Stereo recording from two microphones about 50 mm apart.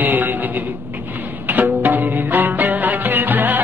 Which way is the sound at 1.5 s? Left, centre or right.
Right.